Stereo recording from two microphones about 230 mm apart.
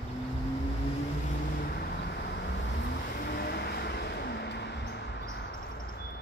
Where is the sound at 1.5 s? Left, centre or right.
Left.